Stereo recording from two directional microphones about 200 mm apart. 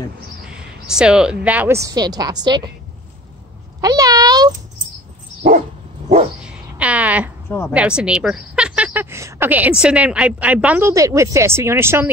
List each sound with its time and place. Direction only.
0.8 s speech: 5° right (ahead or behind); by 2.7 s 20° right (ahead or behind)
3.8 s meow: 20° right (ahead or behind)
6.4 s a sound: 5° right (ahead or behind)
7.4 s a woman's voice: 10° left (ahead or behind)
7.7 s speech: 5° right (ahead or behind)